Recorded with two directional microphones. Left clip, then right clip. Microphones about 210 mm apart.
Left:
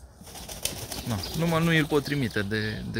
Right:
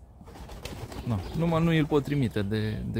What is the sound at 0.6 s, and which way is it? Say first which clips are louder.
Pigeon: left 6 dB; 45° left (ahead or behind).